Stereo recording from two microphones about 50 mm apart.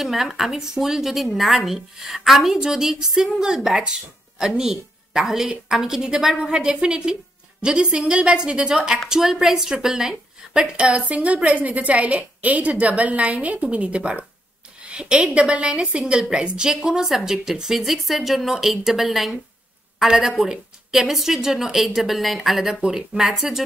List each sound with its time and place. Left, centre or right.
0.0 s a woman's voice: centre